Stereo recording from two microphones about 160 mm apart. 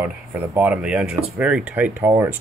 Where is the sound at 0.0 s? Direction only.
10° right (ahead or behind).